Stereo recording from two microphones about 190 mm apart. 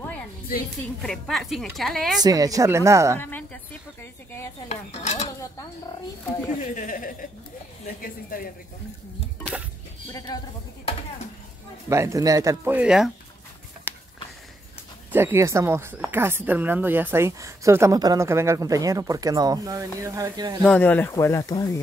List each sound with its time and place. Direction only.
1.0 s a woman's voice: centre (ahead or behind)
2.2 s speech: 20° right (ahead or behind)
3.2 s a woman's voice: 10° left (ahead or behind)
4.6 s dishes: 35° left (ahead or behind)
6.7 s a woman's voice: 45° left (ahead or behind)
10.1 s speech: 20° left (ahead or behind)
11.9 s speech: 15° right (ahead or behind)
13.9 s a sound: 10° right (ahead or behind)
15.0 s speech: 10° right (ahead or behind)
20.6 s speech: 5° left (ahead or behind)